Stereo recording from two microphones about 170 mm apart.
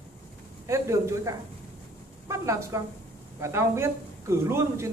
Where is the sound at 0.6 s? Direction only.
20° right (ahead or behind).